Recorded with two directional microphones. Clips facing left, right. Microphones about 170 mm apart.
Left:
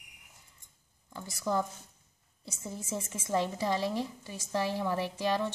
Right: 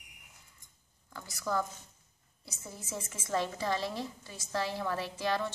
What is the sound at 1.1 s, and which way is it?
A woman's voice, 20° left (ahead or behind).